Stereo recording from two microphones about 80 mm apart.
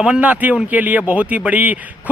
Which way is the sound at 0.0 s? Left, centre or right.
Centre.